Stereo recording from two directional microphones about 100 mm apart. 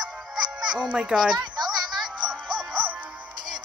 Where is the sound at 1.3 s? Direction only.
45° right (ahead or behind).